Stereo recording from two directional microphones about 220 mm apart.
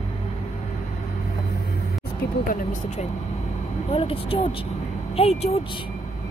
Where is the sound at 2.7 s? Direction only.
30° left (ahead or behind).